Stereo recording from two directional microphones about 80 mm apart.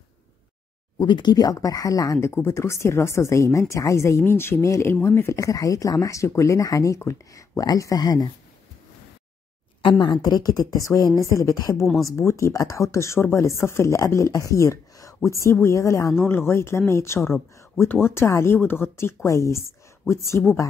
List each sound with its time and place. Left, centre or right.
0.9 s speech: left
1.3 s speech: left
5.4 s speech: left
9.8 s speech: left
11.8 s speech: centre
12.1 s speech: left
16.2 s speech: left
19.2 s speech: left